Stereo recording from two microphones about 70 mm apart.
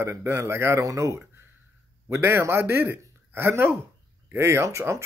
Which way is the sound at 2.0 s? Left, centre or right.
Right.